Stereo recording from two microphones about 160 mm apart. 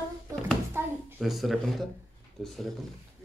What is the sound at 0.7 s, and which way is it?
Speech, 15° right (ahead or behind).